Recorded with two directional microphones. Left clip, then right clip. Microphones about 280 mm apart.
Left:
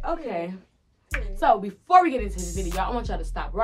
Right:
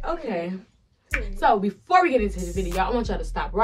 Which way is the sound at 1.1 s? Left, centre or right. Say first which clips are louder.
Right 1 dB; centre.